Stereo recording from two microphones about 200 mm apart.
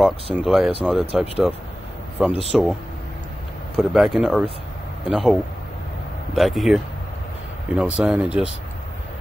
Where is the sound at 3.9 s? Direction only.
Centre (ahead or behind).